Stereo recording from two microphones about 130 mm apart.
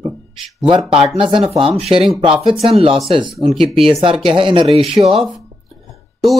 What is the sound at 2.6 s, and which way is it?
Speech, 45° right (ahead or behind).